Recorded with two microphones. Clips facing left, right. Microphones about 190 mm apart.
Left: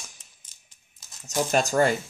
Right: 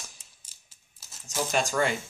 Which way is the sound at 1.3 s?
40° left (ahead or behind).